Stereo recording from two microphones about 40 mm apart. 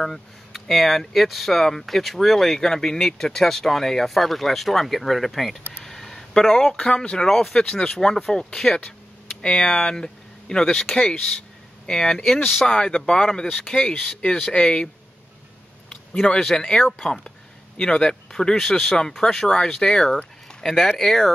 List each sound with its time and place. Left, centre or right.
0.0 s speech: centre
5.9 s a sound: centre
7.0 s speech: centre
7.2 s speech: centre
16.2 s speech: centre